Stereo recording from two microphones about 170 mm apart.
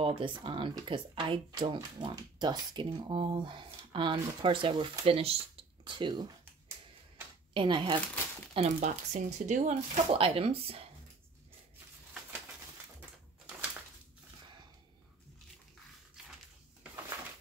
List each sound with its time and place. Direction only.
0.0 s speech: 30° right (ahead or behind)
7.5 s speech: 30° right (ahead or behind)
8.5 s speech: 40° right (ahead or behind)